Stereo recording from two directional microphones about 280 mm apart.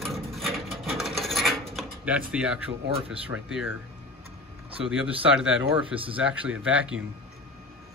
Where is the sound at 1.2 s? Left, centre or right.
Centre.